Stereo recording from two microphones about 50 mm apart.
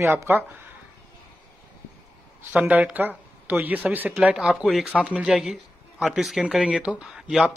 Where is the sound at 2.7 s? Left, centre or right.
Right.